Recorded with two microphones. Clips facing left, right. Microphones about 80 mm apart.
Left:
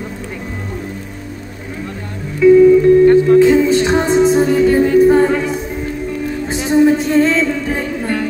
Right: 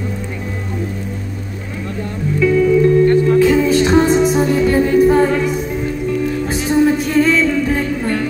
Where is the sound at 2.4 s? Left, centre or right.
Left.